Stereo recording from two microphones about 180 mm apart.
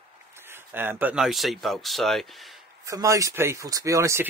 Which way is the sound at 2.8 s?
15° right (ahead or behind).